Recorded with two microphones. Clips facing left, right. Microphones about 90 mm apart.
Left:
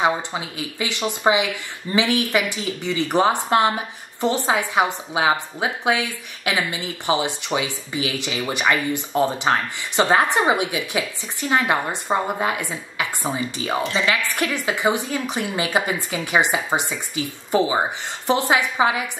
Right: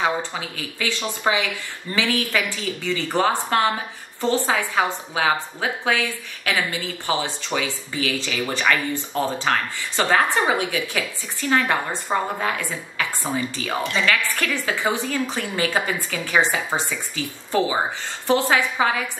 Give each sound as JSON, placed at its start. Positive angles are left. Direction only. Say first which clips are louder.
{"t": 0.0, "sound": "a woman's voice", "louder": "left 2 dB", "side_deg": 20}